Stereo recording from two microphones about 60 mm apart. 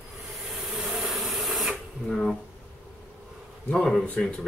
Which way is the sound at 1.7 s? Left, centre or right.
Centre.